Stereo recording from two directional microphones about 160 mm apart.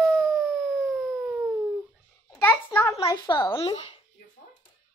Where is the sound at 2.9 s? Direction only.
35° left (ahead or behind).